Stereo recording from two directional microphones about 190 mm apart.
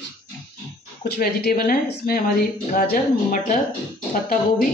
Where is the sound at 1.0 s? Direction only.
55° left (ahead or behind).